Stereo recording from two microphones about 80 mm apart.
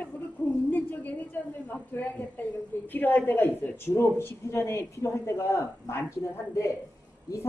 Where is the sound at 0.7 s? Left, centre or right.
Left.